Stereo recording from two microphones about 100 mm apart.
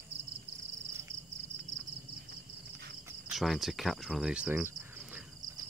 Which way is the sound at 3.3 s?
Centre (ahead or behind).